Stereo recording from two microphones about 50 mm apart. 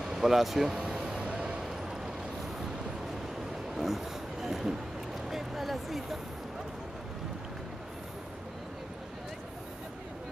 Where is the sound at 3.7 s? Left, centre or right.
Centre.